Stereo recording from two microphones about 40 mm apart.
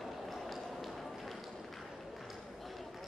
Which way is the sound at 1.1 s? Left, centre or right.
Centre.